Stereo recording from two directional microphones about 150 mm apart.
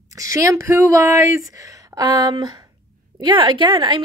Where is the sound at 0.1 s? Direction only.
20° right (ahead or behind).